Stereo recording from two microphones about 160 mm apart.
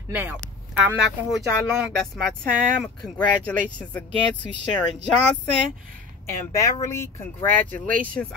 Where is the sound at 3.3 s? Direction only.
10° left (ahead or behind).